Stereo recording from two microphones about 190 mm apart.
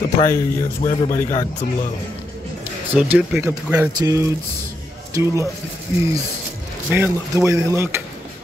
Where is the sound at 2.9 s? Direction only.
5° right (ahead or behind).